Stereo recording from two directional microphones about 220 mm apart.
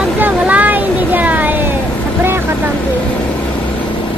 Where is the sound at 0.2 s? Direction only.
5° right (ahead or behind).